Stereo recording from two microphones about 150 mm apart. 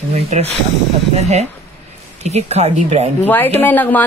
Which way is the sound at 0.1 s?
45° right (ahead or behind).